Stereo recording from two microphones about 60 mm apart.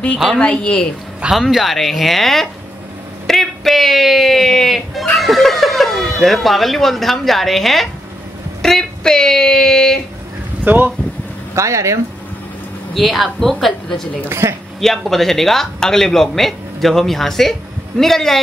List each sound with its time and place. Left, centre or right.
0.4 s speech: centre
1.3 s speech: centre
10.6 s speech: right
11.5 s speech: right
12.9 s speech: centre